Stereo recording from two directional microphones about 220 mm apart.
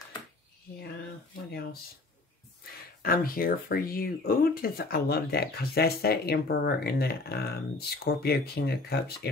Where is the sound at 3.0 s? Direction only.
40° left (ahead or behind).